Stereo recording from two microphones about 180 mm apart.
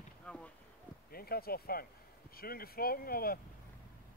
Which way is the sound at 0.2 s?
5° left (ahead or behind).